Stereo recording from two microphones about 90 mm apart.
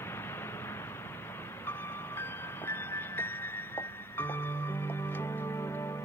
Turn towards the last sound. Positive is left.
turn(degrees=35)  # may be behind; listen again after turning